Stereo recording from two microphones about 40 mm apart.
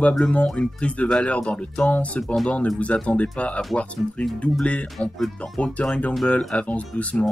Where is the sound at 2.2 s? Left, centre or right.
Centre.